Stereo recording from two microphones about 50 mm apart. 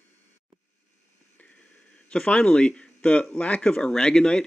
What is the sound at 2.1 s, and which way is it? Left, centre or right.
A man's voice, centre.